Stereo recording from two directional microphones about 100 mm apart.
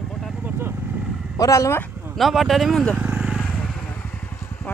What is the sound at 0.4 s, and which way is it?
Vehicle, 20° right (ahead or behind).